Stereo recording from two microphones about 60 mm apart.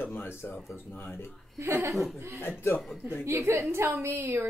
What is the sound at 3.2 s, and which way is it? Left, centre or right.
A woman's voice, right.